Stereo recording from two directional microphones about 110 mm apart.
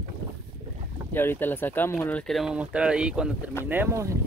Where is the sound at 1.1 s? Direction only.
20° left (ahead or behind).